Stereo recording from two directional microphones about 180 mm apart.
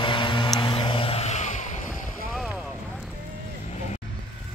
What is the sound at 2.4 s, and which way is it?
Boat, 5° right (ahead or behind).